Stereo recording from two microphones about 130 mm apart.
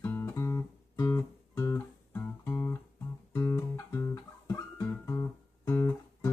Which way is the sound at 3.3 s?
20° left (ahead or behind).